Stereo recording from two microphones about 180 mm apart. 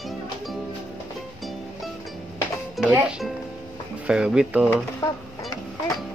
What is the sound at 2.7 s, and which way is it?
Speech, centre (ahead or behind).